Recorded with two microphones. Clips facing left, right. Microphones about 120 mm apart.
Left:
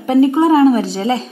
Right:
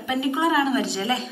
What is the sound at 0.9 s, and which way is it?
Speech, 30° left (ahead or behind).